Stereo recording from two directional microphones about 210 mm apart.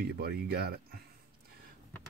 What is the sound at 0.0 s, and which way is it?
Speech, 50° right (ahead or behind).